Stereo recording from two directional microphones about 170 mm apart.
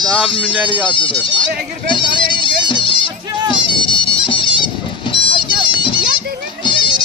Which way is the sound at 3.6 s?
30° left (ahead or behind).